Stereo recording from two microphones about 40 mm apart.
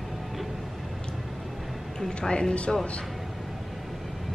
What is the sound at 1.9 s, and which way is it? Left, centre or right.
Speech, centre.